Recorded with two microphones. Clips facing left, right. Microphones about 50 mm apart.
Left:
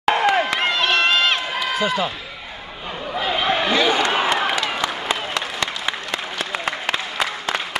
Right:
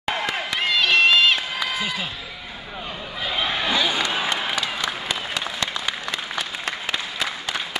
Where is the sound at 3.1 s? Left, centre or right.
Left.